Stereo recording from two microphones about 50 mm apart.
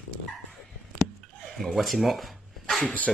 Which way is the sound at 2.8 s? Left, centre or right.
Left.